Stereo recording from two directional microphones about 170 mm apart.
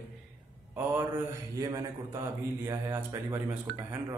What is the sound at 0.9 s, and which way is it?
A man's voice, 20° right (ahead or behind).